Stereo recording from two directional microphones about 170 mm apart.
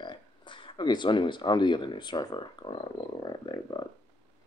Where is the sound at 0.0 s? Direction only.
30° left (ahead or behind).